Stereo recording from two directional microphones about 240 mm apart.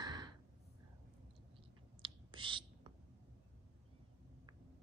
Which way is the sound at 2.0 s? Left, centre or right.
Centre.